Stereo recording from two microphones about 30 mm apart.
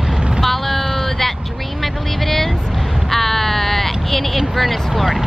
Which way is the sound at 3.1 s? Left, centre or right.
Centre.